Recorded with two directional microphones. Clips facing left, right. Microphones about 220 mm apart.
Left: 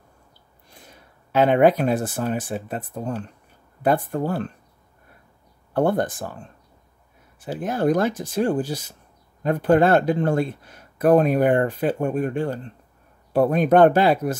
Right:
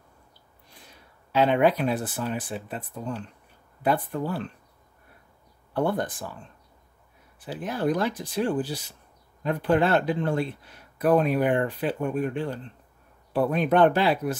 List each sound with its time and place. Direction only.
1.3 s speech: 50° left (ahead or behind)
5.7 s speech: 50° left (ahead or behind)